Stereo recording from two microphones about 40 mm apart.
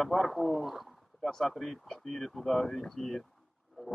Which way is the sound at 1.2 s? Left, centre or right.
Centre.